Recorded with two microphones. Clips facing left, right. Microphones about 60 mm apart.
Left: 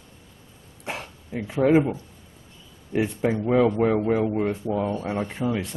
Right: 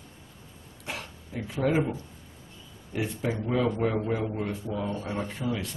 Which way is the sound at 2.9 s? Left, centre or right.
Left.